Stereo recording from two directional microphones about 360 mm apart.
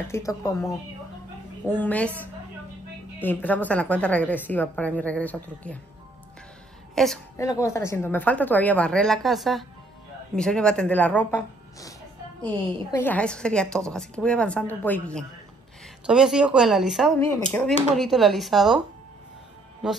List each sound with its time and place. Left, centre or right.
0.1 s speech: centre
7.0 s speech: centre
12.9 s speech: centre
19.8 s speech: centre